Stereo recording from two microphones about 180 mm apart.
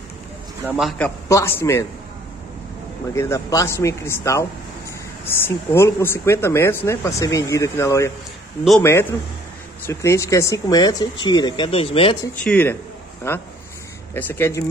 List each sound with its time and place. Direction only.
0.7 s a man's voice: centre (ahead or behind)
3.1 s speech: 15° left (ahead or behind)
9.8 s speech: 15° left (ahead or behind)
12.4 s speech: 10° left (ahead or behind)